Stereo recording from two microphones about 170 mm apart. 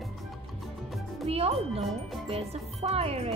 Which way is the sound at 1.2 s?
35° right (ahead or behind).